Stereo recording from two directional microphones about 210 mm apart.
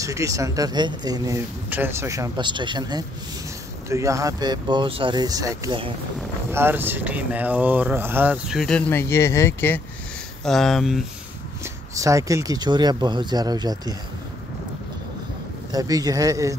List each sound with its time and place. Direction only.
0.0 s speech: 15° right (ahead or behind)
11.6 s speech: 15° right (ahead or behind)
15.7 s speech: 15° right (ahead or behind)